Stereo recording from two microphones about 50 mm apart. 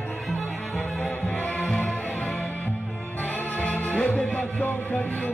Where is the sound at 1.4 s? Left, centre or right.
Left.